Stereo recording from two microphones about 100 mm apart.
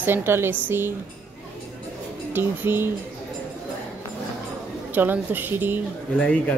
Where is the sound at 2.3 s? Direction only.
20° right (ahead or behind).